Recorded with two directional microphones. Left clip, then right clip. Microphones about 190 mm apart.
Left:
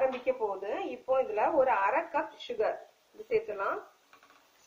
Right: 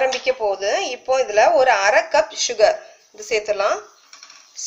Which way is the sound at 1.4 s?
55° right (ahead or behind).